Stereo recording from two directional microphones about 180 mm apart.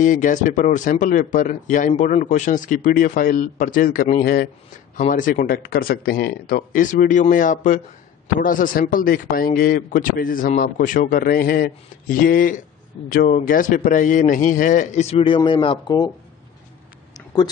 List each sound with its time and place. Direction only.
0.0 s speech: 45° left (ahead or behind); by 16.1 s 25° left (ahead or behind)